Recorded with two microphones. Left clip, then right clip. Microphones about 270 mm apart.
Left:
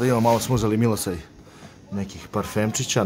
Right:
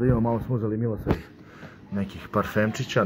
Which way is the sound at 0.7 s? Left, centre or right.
Left.